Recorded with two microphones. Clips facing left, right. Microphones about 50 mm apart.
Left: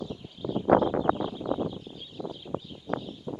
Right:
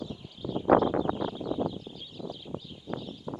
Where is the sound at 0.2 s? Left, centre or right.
Centre.